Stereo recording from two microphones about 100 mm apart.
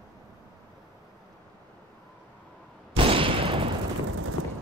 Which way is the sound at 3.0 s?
60° right (ahead or behind).